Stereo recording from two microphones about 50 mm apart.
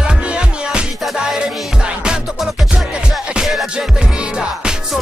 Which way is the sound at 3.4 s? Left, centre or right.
Centre.